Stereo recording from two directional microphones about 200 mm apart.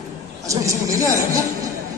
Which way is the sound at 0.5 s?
15° right (ahead or behind).